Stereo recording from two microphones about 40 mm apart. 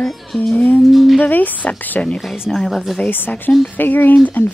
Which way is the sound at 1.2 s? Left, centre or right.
Left.